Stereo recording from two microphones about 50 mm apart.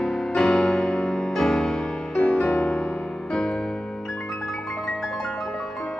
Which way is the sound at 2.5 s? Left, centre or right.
Centre.